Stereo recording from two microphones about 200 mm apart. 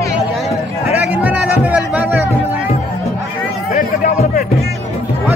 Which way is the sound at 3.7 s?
40° left (ahead or behind).